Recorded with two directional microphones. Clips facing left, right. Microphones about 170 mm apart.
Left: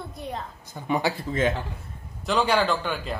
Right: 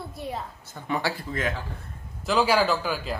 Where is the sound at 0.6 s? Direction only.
15° left (ahead or behind).